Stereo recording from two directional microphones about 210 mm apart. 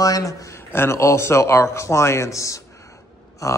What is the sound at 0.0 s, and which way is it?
A man's voice, 15° left (ahead or behind).